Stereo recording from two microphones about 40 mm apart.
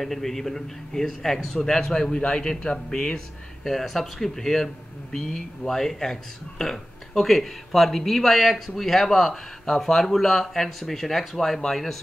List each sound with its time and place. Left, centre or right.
0.0 s a man's voice: centre; by 3.2 s left
3.6 s a man's voice: centre